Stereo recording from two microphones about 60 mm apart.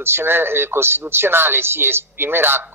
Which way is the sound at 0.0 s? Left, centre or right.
Right.